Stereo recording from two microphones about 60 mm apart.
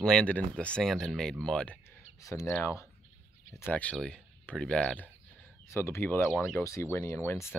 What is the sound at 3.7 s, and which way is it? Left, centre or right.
Speech, left.